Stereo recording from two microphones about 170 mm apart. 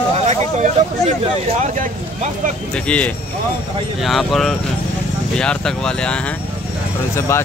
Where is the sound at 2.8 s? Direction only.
5° left (ahead or behind).